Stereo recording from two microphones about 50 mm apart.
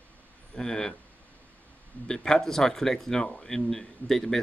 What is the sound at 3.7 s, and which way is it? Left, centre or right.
Speech, centre.